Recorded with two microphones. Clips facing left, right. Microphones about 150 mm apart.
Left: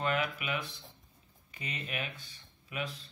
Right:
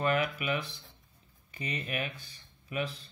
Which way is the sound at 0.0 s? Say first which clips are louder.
Right 3 dB; 45° right (ahead or behind).